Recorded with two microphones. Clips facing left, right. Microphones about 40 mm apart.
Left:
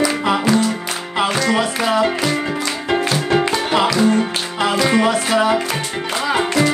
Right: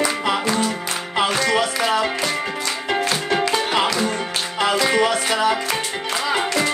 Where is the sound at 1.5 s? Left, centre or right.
Centre.